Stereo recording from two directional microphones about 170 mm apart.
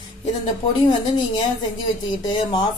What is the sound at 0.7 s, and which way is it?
Speech, 30° left (ahead or behind).